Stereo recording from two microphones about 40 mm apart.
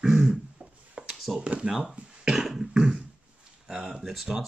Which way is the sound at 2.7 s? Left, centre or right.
Right.